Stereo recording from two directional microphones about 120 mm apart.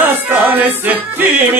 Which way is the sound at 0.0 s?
15° right (ahead or behind).